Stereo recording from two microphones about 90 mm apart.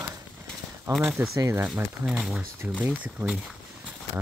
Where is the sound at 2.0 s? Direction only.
10° right (ahead or behind).